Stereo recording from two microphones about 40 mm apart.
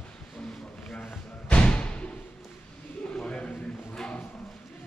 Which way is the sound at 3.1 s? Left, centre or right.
Left.